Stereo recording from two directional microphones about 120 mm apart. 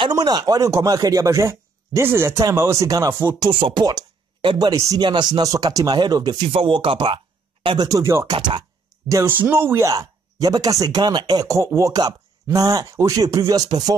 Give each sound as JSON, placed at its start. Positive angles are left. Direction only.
{"t": 0.1, "sound": "speech", "side_deg": -35}
{"t": 3.3, "sound": "speech", "side_deg": -45}
{"t": 6.4, "sound": "speech", "side_deg": -45}
{"t": 7.6, "sound": "speech", "side_deg": -35}
{"t": 8.3, "sound": "speech", "side_deg": -40}
{"t": 9.3, "sound": "speech", "side_deg": -15}